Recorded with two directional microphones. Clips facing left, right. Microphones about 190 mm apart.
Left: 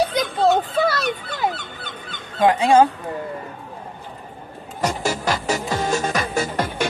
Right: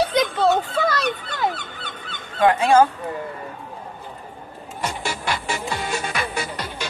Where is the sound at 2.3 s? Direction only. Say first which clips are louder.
Left 1 dB; 15° left (ahead or behind).